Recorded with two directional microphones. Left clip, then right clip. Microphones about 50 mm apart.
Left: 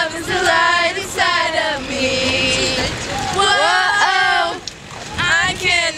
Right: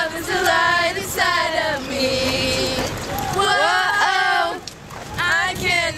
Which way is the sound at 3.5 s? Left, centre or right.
Centre.